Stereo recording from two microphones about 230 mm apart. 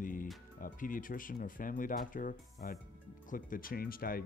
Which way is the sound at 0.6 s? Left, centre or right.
Left.